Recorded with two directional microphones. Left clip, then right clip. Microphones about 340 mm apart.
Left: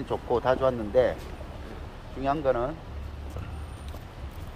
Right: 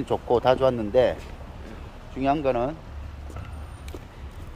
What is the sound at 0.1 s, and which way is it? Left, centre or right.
Speech, right.